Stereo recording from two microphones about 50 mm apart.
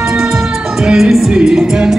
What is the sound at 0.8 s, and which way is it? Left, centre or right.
Music, centre.